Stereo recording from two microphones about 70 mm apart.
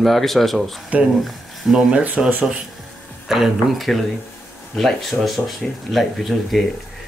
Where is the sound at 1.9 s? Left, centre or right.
Centre.